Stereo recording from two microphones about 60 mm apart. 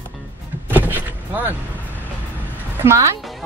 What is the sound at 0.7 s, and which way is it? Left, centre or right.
Vehicle, right.